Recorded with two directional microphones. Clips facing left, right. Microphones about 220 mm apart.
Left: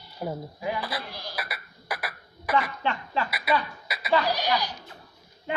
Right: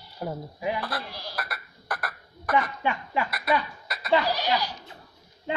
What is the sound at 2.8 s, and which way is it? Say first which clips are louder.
Speech: right 1 dB; 15° right (ahead or behind).